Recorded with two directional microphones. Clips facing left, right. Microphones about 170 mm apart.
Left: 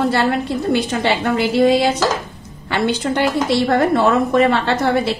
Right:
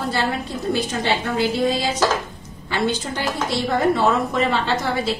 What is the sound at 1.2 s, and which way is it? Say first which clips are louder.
A woman's voice: left 8 dB; 70° left (ahead or behind).